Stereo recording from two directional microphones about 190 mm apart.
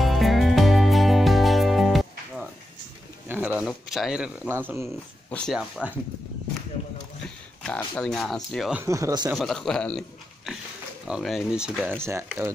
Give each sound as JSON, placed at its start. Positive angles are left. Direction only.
{"t": 0.0, "sound": "music", "side_deg": 0}
{"t": 3.3, "sound": "speech", "side_deg": -10}
{"t": 5.3, "sound": "speech", "side_deg": 0}
{"t": 7.6, "sound": "speech", "side_deg": 5}
{"t": 8.8, "sound": "speech", "side_deg": -15}
{"t": 9.3, "sound": "speech", "side_deg": 0}
{"t": 12.0, "sound": "speech", "side_deg": -15}